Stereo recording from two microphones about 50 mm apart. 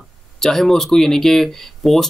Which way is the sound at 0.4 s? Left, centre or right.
Centre.